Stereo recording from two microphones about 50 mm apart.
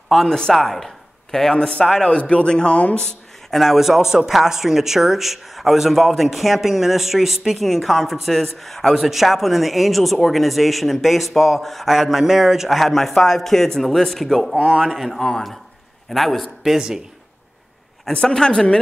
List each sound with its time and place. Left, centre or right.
0.3 s speech: centre
3.1 s speech: centre
16.7 s speech: centre
18.1 s speech: centre